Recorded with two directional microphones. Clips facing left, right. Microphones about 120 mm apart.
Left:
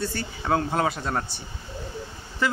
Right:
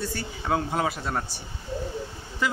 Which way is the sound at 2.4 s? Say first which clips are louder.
Left 2 dB; 15° right (ahead or behind).